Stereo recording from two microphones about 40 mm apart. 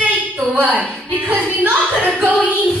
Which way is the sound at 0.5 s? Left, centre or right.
Right.